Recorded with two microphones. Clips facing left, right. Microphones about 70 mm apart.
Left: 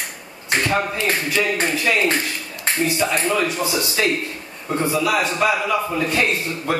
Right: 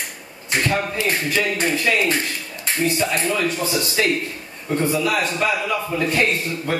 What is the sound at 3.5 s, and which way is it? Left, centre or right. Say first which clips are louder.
Speech: even; centre.